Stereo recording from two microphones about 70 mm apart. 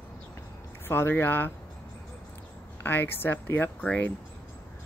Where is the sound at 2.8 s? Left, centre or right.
Left.